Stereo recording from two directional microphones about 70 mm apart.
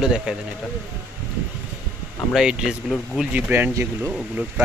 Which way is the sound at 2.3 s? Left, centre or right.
Centre.